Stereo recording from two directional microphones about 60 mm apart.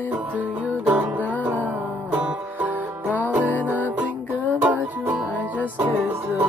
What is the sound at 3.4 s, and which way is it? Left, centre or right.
Music, left.